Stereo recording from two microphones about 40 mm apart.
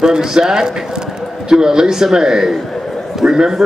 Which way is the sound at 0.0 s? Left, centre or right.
Centre.